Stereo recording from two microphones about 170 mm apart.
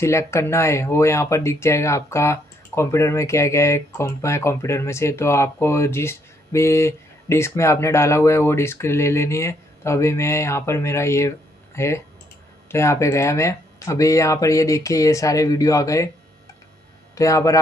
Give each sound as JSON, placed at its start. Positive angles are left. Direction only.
{"t": 0.0, "sound": "speech", "side_deg": 15}
{"t": 17.1, "sound": "speech", "side_deg": 20}